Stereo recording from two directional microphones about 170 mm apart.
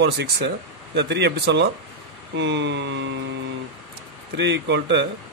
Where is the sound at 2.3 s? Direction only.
90° right.